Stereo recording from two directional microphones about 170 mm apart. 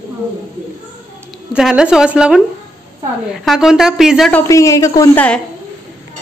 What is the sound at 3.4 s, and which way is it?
Speech, centre (ahead or behind).